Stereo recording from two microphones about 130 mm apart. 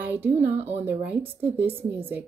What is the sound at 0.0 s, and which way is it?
Speech, 15° right (ahead or behind).